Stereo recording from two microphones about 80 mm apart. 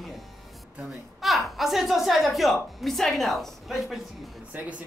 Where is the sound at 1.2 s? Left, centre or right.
Centre.